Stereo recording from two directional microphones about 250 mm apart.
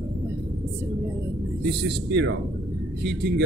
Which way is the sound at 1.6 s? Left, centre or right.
Right.